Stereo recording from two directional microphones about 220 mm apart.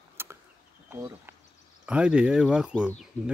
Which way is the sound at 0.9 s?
10° right (ahead or behind).